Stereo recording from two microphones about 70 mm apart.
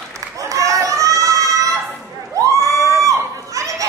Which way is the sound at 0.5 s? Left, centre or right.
Right.